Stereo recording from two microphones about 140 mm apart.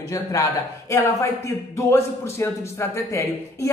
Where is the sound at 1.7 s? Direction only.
20° left (ahead or behind).